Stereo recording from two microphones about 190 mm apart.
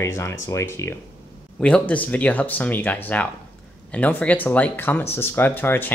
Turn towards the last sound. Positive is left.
turn(degrees=10)  # may be behind; listen again after turning